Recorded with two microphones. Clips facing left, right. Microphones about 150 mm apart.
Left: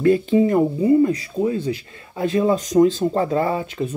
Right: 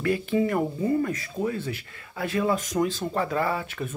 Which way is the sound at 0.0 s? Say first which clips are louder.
Left 8 dB; 25° left (ahead or behind).